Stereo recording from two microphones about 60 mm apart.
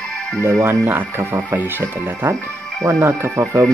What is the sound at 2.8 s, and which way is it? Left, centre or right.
Speech, right.